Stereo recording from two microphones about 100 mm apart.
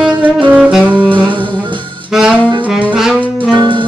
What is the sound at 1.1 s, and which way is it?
Music, 55° right (ahead or behind).